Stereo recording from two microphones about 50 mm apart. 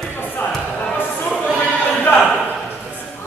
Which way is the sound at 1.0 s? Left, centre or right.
Left.